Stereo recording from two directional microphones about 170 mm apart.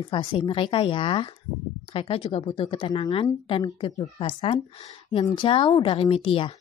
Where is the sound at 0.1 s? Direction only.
30° left (ahead or behind).